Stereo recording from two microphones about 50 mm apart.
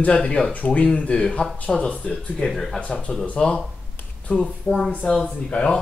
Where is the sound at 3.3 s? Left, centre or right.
Centre.